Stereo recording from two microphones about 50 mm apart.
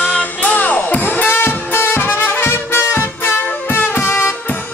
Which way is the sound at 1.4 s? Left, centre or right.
Left.